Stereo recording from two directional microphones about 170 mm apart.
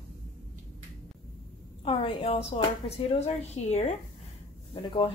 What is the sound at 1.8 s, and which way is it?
A woman's voice, 35° left (ahead or behind).